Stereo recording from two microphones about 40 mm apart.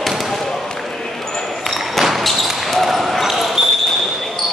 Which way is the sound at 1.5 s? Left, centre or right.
Centre.